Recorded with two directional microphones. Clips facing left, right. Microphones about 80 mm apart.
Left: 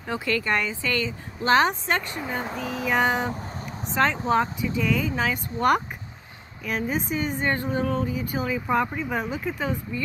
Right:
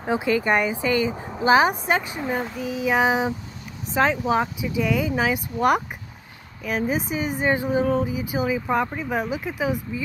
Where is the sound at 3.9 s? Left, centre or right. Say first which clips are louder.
Right 1 dB; centre.